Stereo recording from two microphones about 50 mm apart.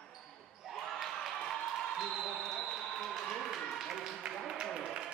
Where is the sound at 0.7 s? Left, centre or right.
Centre.